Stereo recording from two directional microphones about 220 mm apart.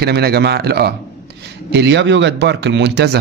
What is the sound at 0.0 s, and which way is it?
Speech, 45° right (ahead or behind).